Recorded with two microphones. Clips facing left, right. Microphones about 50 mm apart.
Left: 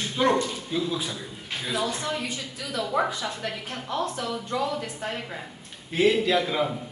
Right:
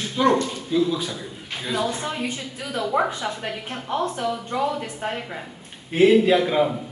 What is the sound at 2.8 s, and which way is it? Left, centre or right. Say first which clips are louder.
Speech: right 3 dB; centre.